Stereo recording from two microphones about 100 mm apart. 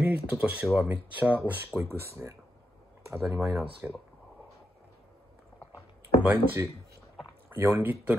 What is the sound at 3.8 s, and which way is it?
Speech, 20° right (ahead or behind).